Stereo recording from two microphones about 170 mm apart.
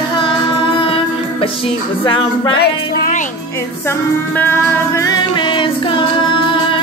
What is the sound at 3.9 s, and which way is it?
Music, 15° left (ahead or behind).